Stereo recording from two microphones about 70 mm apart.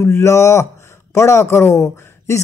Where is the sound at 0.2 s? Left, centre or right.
Left.